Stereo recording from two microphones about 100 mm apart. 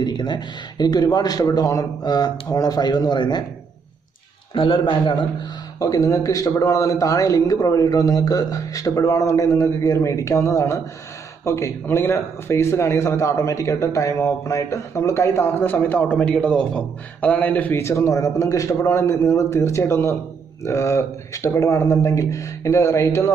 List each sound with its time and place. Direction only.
0.0 s speech: 45° left (ahead or behind)
4.6 s a man's voice: 60° left (ahead or behind)
5.8 s a man's voice: 35° left (ahead or behind)